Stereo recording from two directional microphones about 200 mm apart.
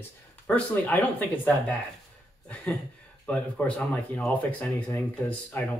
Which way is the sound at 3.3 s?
5° left (ahead or behind).